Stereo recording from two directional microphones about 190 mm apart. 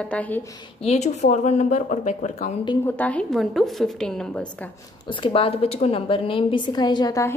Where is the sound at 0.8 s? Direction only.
35° left (ahead or behind).